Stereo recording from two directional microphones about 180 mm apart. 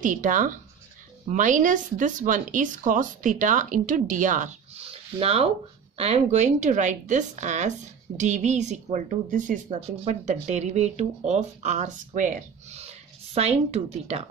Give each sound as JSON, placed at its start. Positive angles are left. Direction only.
{"t": 0.0, "sound": "a woman's voice", "side_deg": -45}